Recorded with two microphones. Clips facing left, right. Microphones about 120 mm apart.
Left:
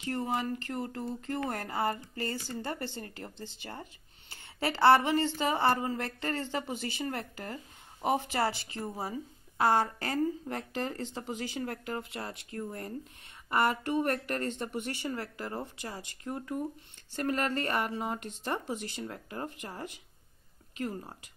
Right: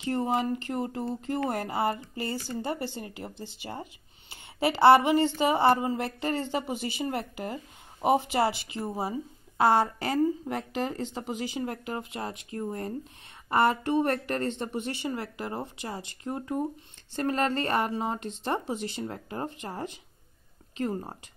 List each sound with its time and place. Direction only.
0.0 s a woman's voice: 20° right (ahead or behind)